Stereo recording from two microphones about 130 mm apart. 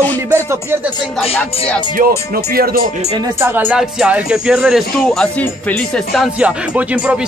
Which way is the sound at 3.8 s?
10° right (ahead or behind).